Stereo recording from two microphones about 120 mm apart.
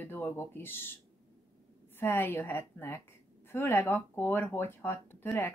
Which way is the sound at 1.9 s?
20° left (ahead or behind).